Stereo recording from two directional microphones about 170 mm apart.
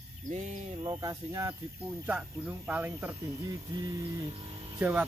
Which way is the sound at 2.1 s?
10° right (ahead or behind).